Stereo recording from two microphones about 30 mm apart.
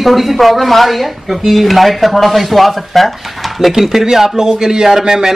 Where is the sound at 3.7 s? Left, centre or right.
Centre.